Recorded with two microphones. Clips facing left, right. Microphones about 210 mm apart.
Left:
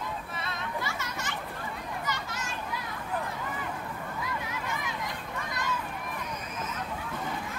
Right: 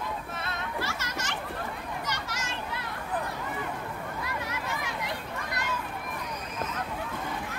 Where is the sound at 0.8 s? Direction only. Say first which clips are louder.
Right 1 dB; 80° right.